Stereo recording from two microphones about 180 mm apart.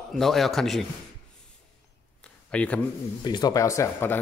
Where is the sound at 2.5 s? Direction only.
5° left (ahead or behind).